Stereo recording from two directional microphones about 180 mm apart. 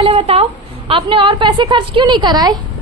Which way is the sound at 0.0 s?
35° right (ahead or behind).